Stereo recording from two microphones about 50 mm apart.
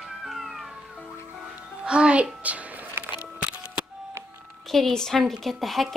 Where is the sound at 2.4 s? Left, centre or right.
Right.